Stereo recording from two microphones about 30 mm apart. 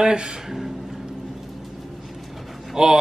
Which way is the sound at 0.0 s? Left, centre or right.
Right.